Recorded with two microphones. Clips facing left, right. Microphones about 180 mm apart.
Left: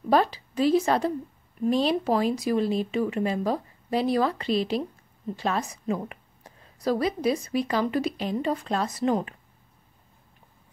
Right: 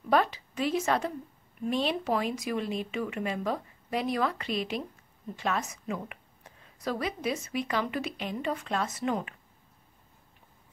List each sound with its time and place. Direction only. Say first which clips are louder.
0.1 s a woman's voice: left 4 dB; 35° left (ahead or behind)